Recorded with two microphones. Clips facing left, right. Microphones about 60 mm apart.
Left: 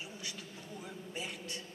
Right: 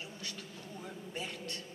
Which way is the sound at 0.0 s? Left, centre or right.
Centre.